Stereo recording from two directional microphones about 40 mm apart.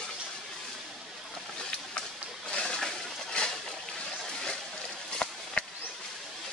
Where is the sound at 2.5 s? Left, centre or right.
Left.